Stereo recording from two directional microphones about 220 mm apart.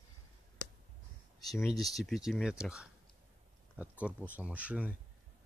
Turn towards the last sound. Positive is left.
turn(degrees=-5)  # may be behind; listen again after turning